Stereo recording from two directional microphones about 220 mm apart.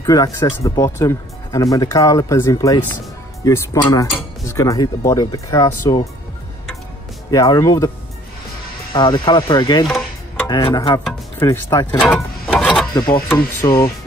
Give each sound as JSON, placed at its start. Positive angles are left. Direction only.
{"t": 0.0, "sound": "speech", "side_deg": 15}
{"t": 7.2, "sound": "speech", "side_deg": 15}
{"t": 8.9, "sound": "speech", "side_deg": 20}
{"t": 13.6, "sound": "speech", "side_deg": 15}